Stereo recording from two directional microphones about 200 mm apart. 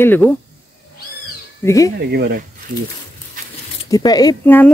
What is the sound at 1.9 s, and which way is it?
Speech, 55° right (ahead or behind).